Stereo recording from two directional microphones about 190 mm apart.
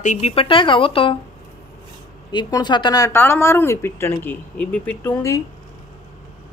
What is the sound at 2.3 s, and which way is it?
A woman's voice, 25° left (ahead or behind).